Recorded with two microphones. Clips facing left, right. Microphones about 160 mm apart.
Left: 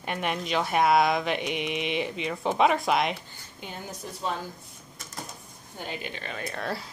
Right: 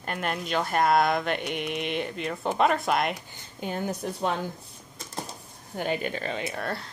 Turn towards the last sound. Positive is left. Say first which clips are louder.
# even
turn(degrees=5)  # may be behind; listen again after turning